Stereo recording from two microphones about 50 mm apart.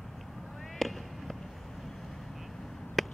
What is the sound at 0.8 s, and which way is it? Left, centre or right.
Fireworks, centre.